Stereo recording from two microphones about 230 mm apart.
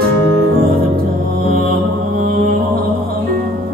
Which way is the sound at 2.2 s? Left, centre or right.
Right.